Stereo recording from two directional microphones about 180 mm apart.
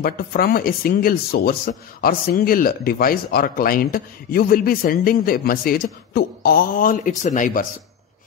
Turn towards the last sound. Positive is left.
turn(degrees=45)  # may be behind; listen again after turning